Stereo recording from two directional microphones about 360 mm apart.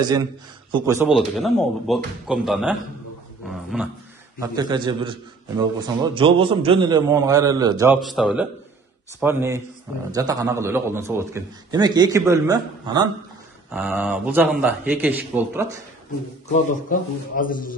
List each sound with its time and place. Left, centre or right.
0.0 s a man's voice: centre
1.0 s a man's voice: centre
3.4 s dog: centre
4.4 s a man's voice: centre
13.7 s a man's voice: centre
16.9 s a man's voice: left